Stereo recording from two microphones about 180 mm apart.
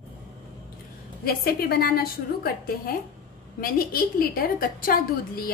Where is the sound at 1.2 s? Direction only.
55° left (ahead or behind).